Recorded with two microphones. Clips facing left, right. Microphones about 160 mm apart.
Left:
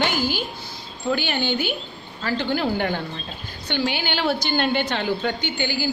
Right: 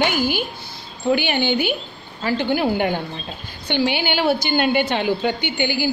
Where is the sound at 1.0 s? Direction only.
15° right (ahead or behind).